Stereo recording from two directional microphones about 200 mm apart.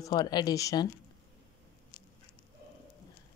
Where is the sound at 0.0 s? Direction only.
20° left (ahead or behind).